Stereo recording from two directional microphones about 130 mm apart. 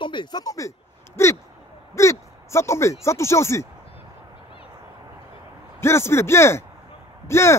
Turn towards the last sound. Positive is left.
turn(degrees=20)  # may be behind; listen again after turning